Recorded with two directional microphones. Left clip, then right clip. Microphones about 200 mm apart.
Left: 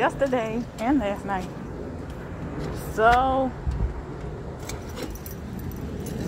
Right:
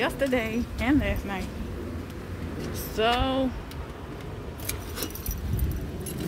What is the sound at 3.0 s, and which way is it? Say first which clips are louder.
Speech: left 6 dB; 35° right (ahead or behind).